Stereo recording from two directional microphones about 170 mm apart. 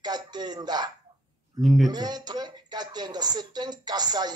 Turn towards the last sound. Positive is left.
turn(degrees=-25)  # may be behind; listen again after turning